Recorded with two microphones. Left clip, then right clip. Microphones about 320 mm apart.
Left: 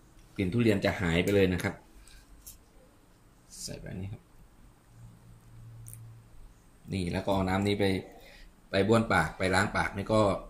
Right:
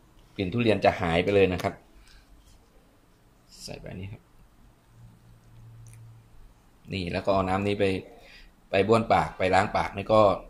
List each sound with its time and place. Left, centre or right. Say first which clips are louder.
0.4 s speech: right 4 dB; centre
3.6 s speech: right 2 dB; centre
6.9 s speech: right 5 dB; centre